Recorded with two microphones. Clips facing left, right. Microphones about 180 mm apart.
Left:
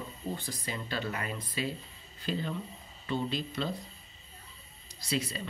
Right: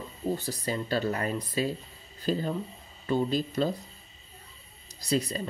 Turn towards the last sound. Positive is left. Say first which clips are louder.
# right 5 dB
turn(degrees=-40)  # may be behind; listen again after turning